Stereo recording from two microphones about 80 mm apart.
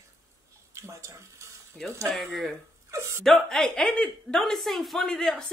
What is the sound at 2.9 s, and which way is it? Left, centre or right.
Speech, right.